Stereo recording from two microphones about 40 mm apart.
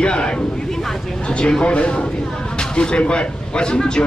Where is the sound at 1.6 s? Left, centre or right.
Left.